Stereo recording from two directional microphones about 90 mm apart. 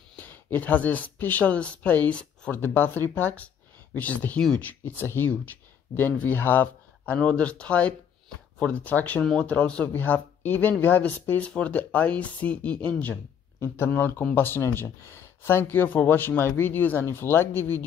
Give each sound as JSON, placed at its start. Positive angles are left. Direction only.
{"t": 0.1, "sound": "speech", "side_deg": 20}
{"t": 4.8, "sound": "speech", "side_deg": 25}
{"t": 9.2, "sound": "speech", "side_deg": 5}